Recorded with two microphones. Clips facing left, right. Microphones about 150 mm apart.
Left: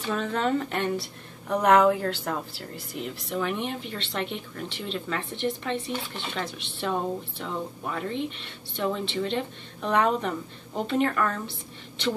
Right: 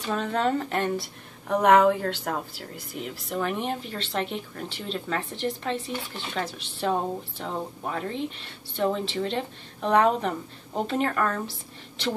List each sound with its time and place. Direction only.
0.1 s a woman's voice: 35° right (ahead or behind)
2.9 s speech: centre (ahead or behind)
3.3 s speech: 40° right (ahead or behind)
4.3 s speech: centre (ahead or behind)
4.8 s speech: 35° right (ahead or behind)
5.8 s speech: centre (ahead or behind)
6.3 s a woman's voice: 40° right (ahead or behind)